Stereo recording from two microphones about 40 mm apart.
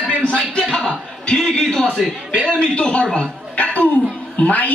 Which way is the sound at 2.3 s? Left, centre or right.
Right.